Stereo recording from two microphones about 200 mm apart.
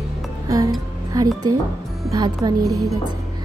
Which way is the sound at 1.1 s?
20° right (ahead or behind).